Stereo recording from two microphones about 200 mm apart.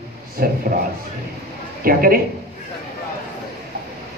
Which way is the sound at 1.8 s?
45° right (ahead or behind).